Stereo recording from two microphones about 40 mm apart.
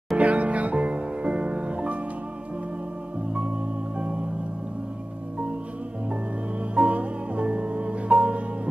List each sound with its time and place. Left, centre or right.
0.2 s music: right
6.7 s music: right